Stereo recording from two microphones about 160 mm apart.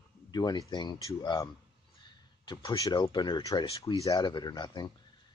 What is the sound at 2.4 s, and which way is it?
Speech, 25° left (ahead or behind).